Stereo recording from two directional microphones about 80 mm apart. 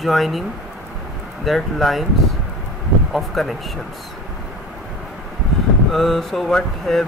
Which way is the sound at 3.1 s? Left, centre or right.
Centre.